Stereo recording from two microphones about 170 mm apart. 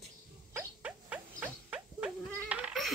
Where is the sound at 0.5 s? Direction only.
10° right (ahead or behind).